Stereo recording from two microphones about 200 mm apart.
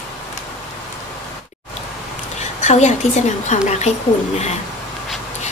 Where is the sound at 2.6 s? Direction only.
35° left (ahead or behind).